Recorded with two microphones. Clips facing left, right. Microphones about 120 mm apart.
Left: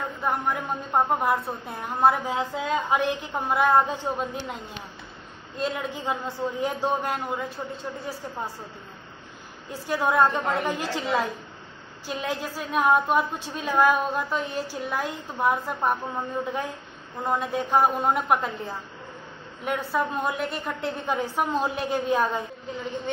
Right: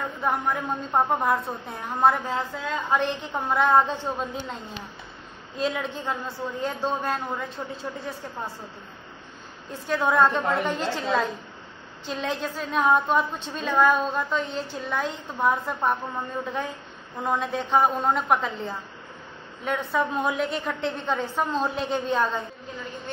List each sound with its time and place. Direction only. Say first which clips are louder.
0.2 s a woman's voice: right 1 dB; 5° left (ahead or behind)
5.9 s a woman's voice: left 1 dB; 15° left (ahead or behind)
9.7 s a woman's voice: right 1 dB; 10° left (ahead or behind)